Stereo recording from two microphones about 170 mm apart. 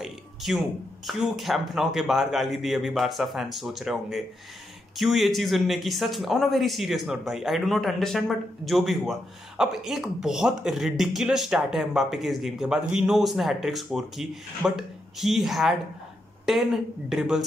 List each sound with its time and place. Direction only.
0.0 s speech: centre (ahead or behind)